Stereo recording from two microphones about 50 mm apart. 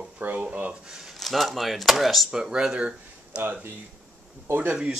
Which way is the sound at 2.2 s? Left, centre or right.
Centre.